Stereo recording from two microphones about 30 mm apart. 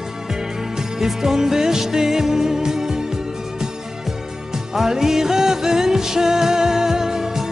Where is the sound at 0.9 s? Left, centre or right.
Centre.